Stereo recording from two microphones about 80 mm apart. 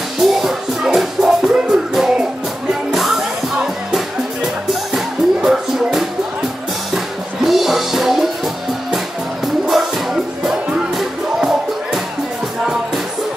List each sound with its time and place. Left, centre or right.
0.2 s music: centre
7.4 s music: centre
10.4 s music: centre